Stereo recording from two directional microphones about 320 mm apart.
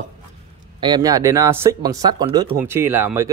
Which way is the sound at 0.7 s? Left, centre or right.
Centre.